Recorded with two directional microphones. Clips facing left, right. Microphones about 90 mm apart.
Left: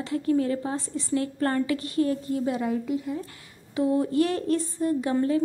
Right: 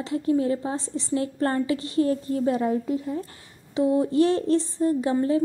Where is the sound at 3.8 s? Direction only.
20° right (ahead or behind).